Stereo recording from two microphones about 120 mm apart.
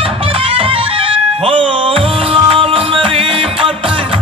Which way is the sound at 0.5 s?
50° right (ahead or behind).